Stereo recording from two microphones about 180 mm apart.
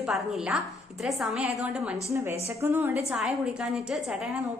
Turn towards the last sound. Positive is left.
turn(degrees=-5)  # may be behind; listen again after turning